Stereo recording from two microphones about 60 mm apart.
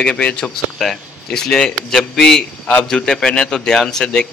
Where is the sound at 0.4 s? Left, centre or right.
Centre.